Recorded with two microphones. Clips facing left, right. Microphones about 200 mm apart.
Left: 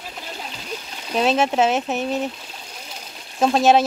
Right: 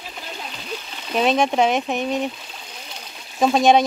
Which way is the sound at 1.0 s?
Centre (ahead or behind).